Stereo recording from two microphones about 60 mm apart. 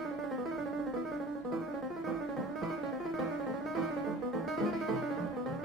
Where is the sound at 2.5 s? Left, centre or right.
Centre.